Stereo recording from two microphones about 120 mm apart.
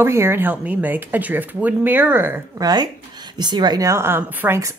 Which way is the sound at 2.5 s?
30° right (ahead or behind).